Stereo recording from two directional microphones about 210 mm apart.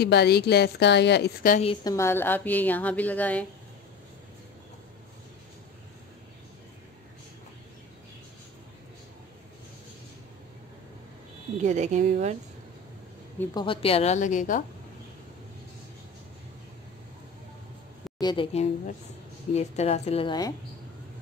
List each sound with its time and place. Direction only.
0.0 s a woman's voice: 50° left (ahead or behind)
1.6 s a woman's voice: 25° left (ahead or behind)
2.0 s a woman's voice: 10° left (ahead or behind)
11.6 s speech: 35° right (ahead or behind)
13.6 s a woman's voice: 25° left (ahead or behind)
18.2 s a woman's voice: 25° left (ahead or behind)